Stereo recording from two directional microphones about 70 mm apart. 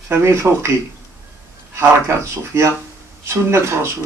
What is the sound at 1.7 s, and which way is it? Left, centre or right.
Speech, right.